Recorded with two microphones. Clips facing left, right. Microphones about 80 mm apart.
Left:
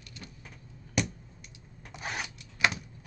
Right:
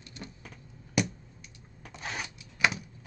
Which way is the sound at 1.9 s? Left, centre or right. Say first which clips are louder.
Left 1 dB; centre.